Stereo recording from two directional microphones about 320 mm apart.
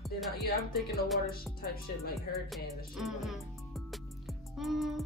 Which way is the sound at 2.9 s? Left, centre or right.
Centre.